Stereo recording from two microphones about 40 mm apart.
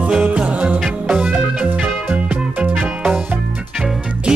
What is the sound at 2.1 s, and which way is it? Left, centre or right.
Music, right.